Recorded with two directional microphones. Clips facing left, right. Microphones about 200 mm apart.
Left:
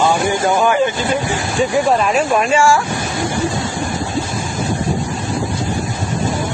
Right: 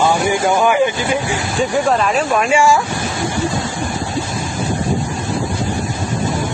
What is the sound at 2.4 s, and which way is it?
Speech, 15° right (ahead or behind).